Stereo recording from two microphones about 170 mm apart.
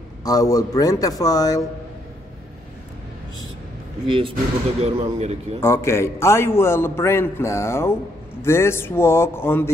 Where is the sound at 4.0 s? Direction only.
30° right (ahead or behind).